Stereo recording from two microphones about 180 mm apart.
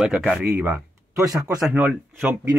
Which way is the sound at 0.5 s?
15° right (ahead or behind).